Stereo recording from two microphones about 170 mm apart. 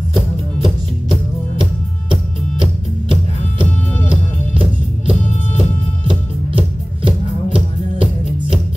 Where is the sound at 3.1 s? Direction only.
30° right (ahead or behind).